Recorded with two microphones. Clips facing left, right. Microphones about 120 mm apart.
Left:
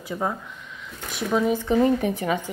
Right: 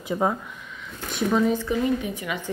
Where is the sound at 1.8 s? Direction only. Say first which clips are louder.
Left 4 dB; 35° left (ahead or behind).